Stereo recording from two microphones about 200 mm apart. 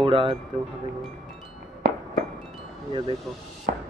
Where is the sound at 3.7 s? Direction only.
50° right (ahead or behind).